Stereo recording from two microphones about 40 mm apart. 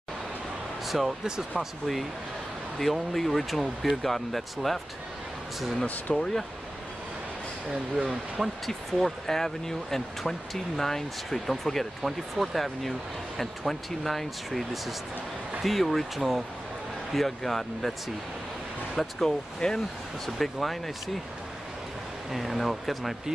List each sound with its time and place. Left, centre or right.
0.8 s speech: centre
2.8 s speech: centre
6.1 s speech: centre
7.7 s speech: centre
8.6 s speech: centre
18.9 s speech: centre
20.2 s speech: centre
22.3 s speech: centre